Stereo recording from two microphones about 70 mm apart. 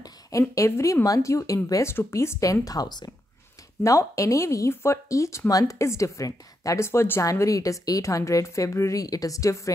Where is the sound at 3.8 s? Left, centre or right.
Left.